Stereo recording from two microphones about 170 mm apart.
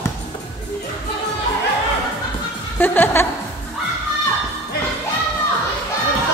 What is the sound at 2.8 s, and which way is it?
Chuckle, 10° left (ahead or behind).